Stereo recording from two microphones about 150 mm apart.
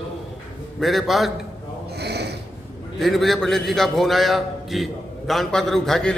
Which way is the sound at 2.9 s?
Centre (ahead or behind).